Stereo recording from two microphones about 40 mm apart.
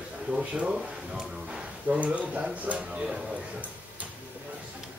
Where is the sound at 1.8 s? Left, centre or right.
Right.